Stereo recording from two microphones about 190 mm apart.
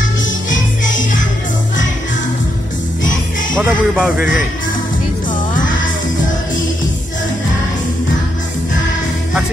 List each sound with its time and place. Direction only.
0.5 s music: 80° left
3.6 s speech: 5° right (ahead or behind)